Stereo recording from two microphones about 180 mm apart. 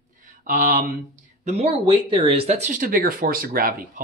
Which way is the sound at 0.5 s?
50° right (ahead or behind).